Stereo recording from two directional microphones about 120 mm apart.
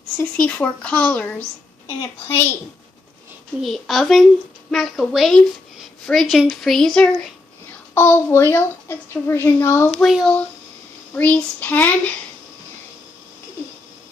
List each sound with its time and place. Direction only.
0.2 s speech: 10° left (ahead or behind)
3.6 s a woman's voice: centre (ahead or behind)
7.9 s a woman's voice: 20° left (ahead or behind)
9.9 s a woman's voice: centre (ahead or behind)
11.1 s speech: 10° left (ahead or behind)